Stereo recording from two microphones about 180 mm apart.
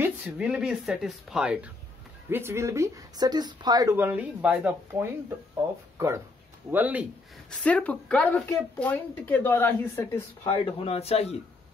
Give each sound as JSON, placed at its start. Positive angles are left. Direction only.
{"t": 0.0, "sound": "speech", "side_deg": -10}
{"t": 6.7, "sound": "speech", "side_deg": -10}
{"t": 7.6, "sound": "speech", "side_deg": 10}
{"t": 10.6, "sound": "a man's voice", "side_deg": 30}